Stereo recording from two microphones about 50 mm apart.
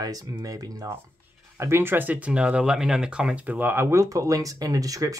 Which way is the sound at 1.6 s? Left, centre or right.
Right.